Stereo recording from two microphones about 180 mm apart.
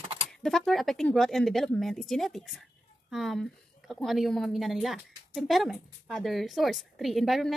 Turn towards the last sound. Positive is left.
turn(degrees=0)  # may be behind; listen again after turning